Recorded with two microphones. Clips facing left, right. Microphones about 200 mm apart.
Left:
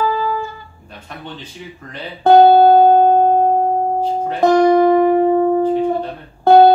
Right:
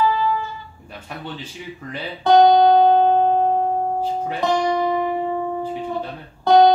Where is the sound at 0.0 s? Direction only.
45° left (ahead or behind).